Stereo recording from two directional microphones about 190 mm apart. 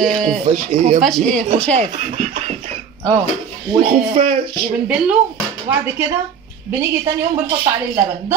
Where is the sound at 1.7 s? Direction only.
35° right (ahead or behind).